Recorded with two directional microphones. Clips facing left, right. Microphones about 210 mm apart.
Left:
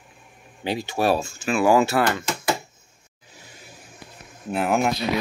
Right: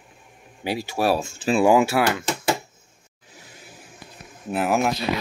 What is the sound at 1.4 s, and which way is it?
Speech, 35° right (ahead or behind).